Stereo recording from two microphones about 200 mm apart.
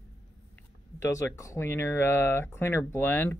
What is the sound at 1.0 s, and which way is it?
Speech, 15° left (ahead or behind).